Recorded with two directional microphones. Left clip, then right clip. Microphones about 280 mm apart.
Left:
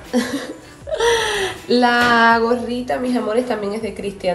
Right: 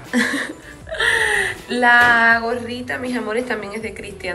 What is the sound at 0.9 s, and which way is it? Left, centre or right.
Whimper, left.